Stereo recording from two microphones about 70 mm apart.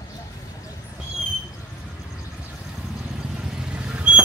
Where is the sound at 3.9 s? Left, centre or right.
Centre.